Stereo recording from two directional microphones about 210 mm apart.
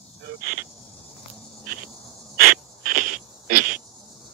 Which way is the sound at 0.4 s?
45° right (ahead or behind).